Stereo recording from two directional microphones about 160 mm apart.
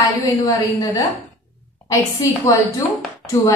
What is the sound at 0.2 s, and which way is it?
Speech, 25° left (ahead or behind).